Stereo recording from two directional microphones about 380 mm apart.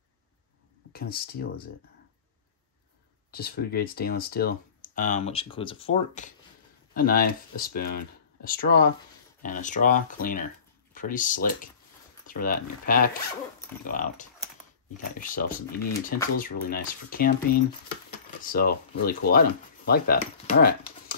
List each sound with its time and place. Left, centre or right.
0.9 s speech: left
3.3 s speech: left